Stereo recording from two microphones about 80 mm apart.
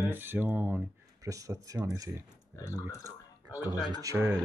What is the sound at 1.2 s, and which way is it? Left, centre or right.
Speech, right.